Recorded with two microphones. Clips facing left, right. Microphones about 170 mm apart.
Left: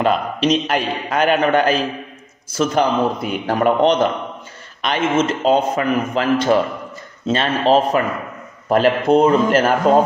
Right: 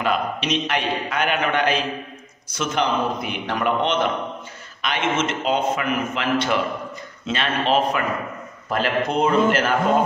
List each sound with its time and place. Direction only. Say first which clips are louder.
0.0 s a man's voice: left 6 dB; 35° left (ahead or behind)